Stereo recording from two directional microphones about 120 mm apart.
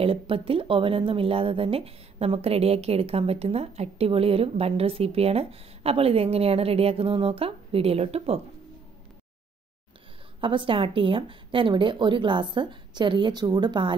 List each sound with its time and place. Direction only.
0.0 s speech: 50° right (ahead or behind)
10.4 s a woman's voice: 45° right (ahead or behind)